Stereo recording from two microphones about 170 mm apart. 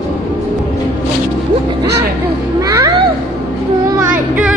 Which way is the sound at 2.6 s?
20° right (ahead or behind).